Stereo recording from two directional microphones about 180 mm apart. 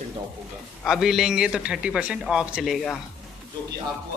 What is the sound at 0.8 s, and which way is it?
A man's voice, centre (ahead or behind).